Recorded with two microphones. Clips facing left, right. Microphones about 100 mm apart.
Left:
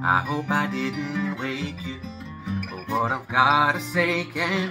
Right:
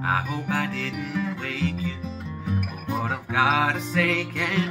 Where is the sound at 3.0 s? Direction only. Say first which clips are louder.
Left 3 dB; 15° left (ahead or behind).